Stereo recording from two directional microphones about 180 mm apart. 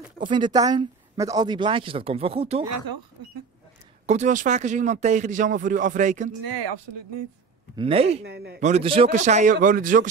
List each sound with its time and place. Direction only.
0.3 s speech: 25° right (ahead or behind)
4.0 s a man's voice: 40° right (ahead or behind)
7.7 s speech: 30° right (ahead or behind)
8.2 s speech: 65° right (ahead or behind)
8.5 s a man's voice: 40° right (ahead or behind)